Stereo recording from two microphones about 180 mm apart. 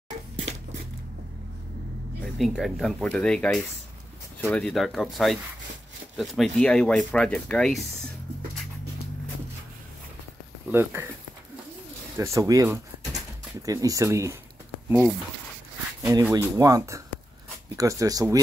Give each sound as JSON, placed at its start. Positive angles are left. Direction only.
{"t": 2.2, "sound": "speech", "side_deg": 0}
{"t": 10.7, "sound": "speech", "side_deg": -10}
{"t": 12.2, "sound": "speech", "side_deg": -15}
{"t": 14.9, "sound": "speech", "side_deg": -5}